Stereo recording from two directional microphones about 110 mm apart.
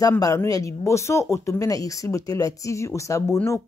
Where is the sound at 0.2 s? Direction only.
30° left (ahead or behind).